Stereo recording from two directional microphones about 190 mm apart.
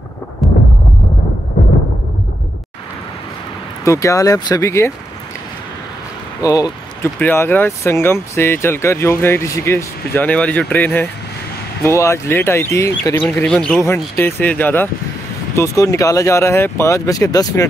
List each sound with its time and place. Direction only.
0.4 s a sound: centre (ahead or behind)
3.8 s speech: 15° left (ahead or behind)
6.4 s speech: 15° left (ahead or behind)